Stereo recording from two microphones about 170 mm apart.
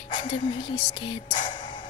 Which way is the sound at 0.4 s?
30° left (ahead or behind).